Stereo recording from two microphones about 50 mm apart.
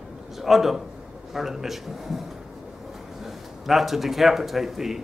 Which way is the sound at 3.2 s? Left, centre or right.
Centre.